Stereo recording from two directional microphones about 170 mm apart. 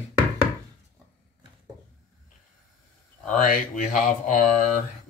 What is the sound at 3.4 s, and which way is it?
Speech, 55° left (ahead or behind).